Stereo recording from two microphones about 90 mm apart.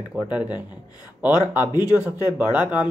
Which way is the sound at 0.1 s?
15° right (ahead or behind).